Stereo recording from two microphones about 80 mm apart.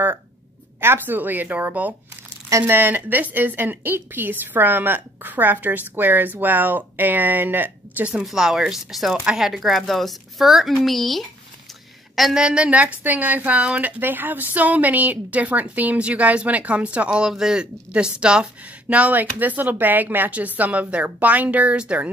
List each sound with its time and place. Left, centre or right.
0.7 s speech: right
8.1 s speech: centre
12.4 s speech: centre